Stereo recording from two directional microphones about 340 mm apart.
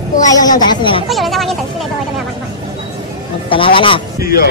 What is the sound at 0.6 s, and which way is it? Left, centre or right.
Speech, centre.